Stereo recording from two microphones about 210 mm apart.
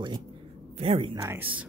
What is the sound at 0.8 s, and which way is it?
Speech, 30° right (ahead or behind).